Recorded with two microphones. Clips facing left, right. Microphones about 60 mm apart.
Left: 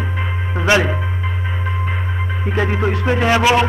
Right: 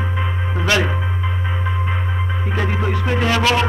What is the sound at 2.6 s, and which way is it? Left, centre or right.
A man's voice, centre.